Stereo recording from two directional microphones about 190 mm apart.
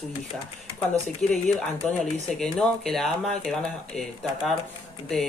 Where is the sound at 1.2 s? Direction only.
Centre (ahead or behind).